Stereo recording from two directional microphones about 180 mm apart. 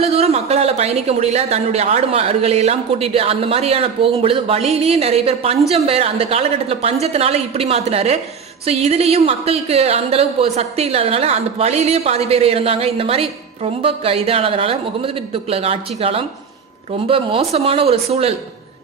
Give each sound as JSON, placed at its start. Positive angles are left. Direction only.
{"t": 0.0, "sound": "speech", "side_deg": -35}